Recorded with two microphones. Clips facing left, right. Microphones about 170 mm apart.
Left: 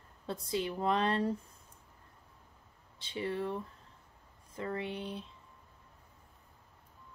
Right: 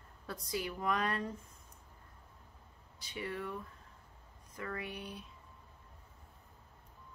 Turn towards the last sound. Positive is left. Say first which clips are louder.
# left 5 dB
turn(degrees=25)  # may be behind; listen again after turning